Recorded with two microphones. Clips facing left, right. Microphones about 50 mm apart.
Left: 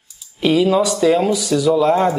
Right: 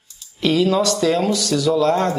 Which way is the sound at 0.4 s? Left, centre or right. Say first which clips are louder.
Left 2 dB; centre.